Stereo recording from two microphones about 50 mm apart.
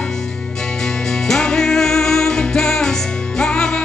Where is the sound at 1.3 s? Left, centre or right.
Centre.